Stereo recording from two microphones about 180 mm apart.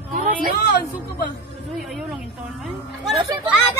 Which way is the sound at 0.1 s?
45° right (ahead or behind).